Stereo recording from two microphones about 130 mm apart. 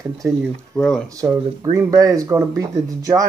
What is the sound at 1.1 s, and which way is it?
Speech, 25° right (ahead or behind).